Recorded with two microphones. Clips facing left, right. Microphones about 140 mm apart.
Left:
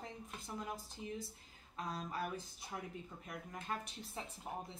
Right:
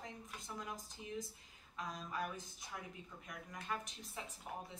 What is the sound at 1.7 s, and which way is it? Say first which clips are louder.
A woman's voice: left 1 dB; 30° left (ahead or behind).